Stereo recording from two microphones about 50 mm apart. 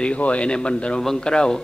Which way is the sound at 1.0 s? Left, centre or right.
Centre.